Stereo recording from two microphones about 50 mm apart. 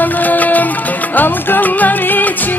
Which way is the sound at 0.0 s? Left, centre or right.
Left.